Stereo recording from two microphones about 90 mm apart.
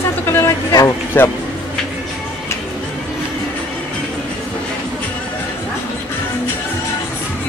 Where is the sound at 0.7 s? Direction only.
45° left (ahead or behind).